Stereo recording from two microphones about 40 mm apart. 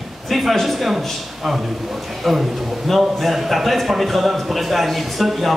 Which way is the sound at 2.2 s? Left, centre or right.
Centre.